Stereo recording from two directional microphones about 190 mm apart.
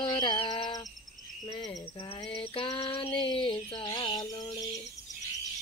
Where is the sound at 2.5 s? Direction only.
25° left (ahead or behind).